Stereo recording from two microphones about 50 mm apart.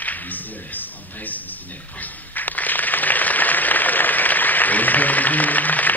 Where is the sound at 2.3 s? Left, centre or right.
Left.